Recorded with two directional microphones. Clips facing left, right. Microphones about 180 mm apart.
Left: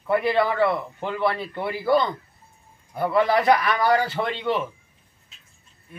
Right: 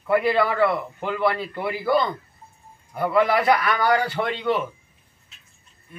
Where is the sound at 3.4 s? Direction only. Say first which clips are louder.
Left 1 dB; centre (ahead or behind).